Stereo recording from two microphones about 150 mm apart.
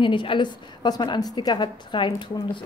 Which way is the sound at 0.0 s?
35° left (ahead or behind).